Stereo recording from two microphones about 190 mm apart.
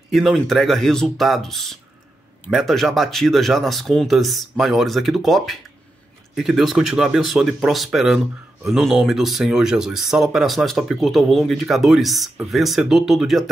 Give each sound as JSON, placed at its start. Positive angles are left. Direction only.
{"t": 0.1, "sound": "speech", "side_deg": 0}